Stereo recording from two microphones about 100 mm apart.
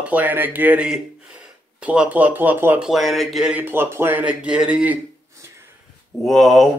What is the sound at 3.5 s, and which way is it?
Speech, 20° right (ahead or behind).